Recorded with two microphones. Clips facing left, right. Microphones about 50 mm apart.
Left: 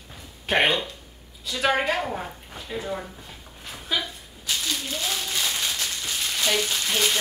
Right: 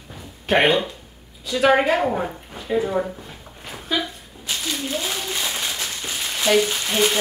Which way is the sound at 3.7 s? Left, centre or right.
Centre.